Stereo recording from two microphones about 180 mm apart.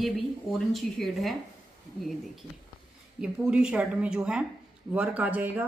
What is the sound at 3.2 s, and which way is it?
A man's voice, 5° right (ahead or behind).